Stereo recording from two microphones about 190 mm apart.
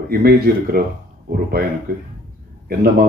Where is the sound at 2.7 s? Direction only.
50° right (ahead or behind).